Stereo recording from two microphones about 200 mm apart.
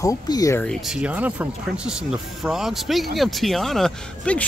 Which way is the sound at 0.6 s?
Centre (ahead or behind).